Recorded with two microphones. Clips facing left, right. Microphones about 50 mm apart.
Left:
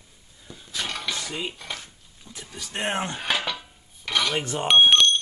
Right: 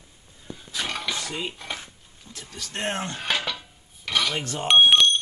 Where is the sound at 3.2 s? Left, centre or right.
Centre.